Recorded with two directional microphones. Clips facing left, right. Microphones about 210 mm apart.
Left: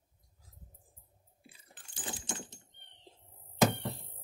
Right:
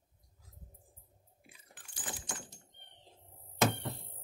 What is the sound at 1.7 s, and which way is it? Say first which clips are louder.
Keys jangling: left 2 dB; 25° left (ahead or behind).